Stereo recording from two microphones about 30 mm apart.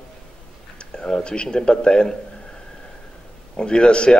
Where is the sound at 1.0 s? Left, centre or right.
Left.